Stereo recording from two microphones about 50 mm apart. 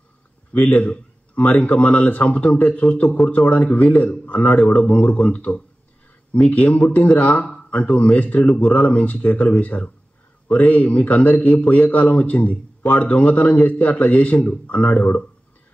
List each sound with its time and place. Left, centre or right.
0.5 s a man's voice: left